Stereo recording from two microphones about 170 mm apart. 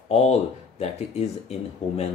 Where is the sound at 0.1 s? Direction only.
40° left (ahead or behind).